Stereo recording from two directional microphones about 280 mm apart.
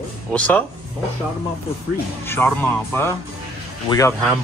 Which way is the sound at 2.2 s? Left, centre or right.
Centre.